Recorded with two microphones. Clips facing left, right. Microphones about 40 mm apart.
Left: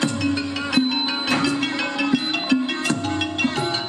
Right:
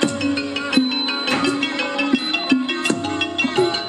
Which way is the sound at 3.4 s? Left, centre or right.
Centre.